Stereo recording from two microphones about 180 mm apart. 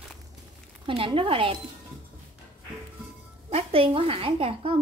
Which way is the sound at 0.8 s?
30° right (ahead or behind).